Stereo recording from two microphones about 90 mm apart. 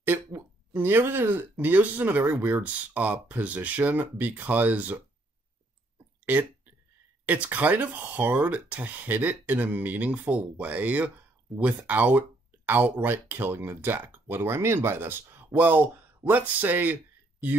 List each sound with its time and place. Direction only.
0.0 s speech: 20° right (ahead or behind)
7.2 s speech: 20° right (ahead or behind)